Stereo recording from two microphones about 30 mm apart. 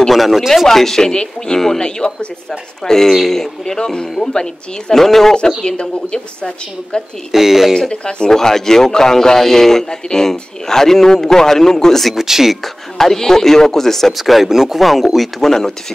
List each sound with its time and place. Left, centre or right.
0.1 s speech: centre
0.7 s a man's voice: centre
1.1 s a woman's voice: left
2.8 s a man's voice: centre
4.9 s a man's voice: centre
5.6 s a woman's voice: left
7.3 s speech: centre
7.9 s speech: left
8.3 s a man's voice: centre
12.2 s speech: centre
12.9 s a man's voice: centre
14.1 s speech: centre
15.4 s a man's voice: centre